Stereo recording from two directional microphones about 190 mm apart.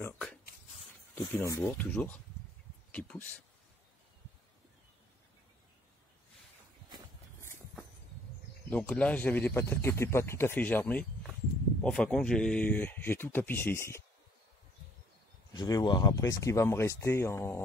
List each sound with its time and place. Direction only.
0.0 s a sound: 5° left (ahead or behind)
1.1 s speech: 15° left (ahead or behind)
8.6 s speech: 5° left (ahead or behind)
15.5 s speech: 20° left (ahead or behind)